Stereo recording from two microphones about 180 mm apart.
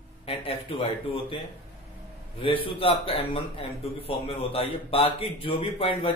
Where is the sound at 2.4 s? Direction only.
30° left (ahead or behind).